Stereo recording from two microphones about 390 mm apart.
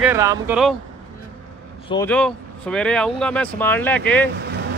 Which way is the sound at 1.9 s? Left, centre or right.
Centre.